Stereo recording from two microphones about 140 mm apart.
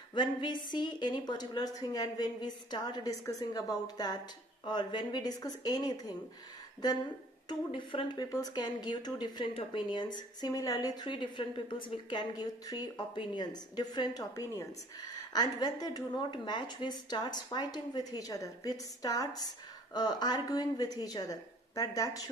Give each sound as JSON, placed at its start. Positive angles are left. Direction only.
{"t": 0.1, "sound": "a woman's voice", "side_deg": 35}
{"t": 7.4, "sound": "a woman's voice", "side_deg": 35}